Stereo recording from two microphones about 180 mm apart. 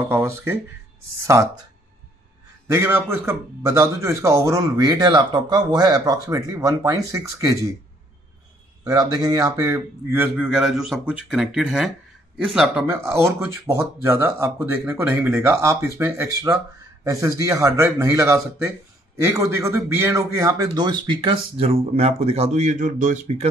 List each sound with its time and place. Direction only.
0.1 s a man's voice: 15° right (ahead or behind)
2.7 s a man's voice: 10° right (ahead or behind)
8.8 s a man's voice: 20° right (ahead or behind); by 23.5 s 35° right (ahead or behind)